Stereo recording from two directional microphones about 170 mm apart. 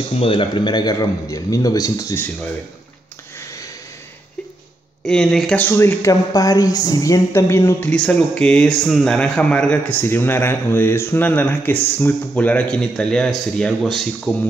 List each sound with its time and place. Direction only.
0.2 s a man's voice: 30° left (ahead or behind); by 2.5 s 10° left (ahead or behind)
5.0 s speech: 5° left (ahead or behind)